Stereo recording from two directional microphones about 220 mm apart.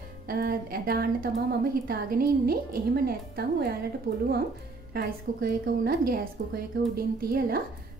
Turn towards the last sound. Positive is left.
turn(degrees=-40)  # may be behind; listen again after turning